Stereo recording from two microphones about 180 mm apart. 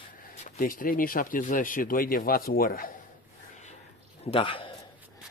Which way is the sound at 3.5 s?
40° left (ahead or behind).